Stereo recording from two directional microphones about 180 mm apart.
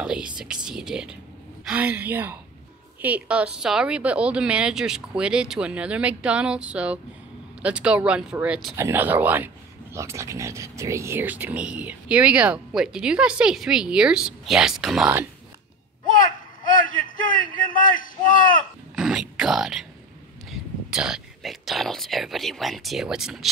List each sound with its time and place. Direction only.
0.0 s speech: 5° right (ahead or behind)
16.6 s a man's voice: 45° left (ahead or behind)
18.9 s speech: 5° right (ahead or behind)